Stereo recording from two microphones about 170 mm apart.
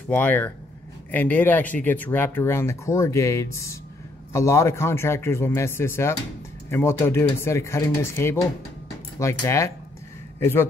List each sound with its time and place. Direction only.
0.1 s speech: 10° left (ahead or behind)